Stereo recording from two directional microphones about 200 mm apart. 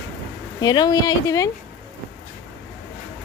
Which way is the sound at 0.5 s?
20° left (ahead or behind).